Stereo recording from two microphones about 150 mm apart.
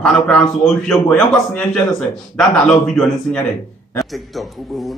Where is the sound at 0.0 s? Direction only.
5° left (ahead or behind).